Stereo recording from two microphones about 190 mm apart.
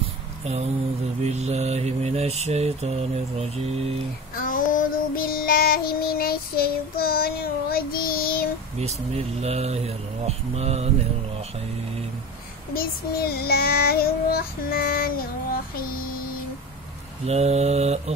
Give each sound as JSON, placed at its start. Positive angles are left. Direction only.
{"t": 1.2, "sound": "mantra", "side_deg": -35}
{"t": 4.4, "sound": "child singing", "side_deg": 45}
{"t": 8.7, "sound": "mantra", "side_deg": -35}
{"t": 12.7, "sound": "child singing", "side_deg": 55}
{"t": 17.3, "sound": "mantra", "side_deg": -35}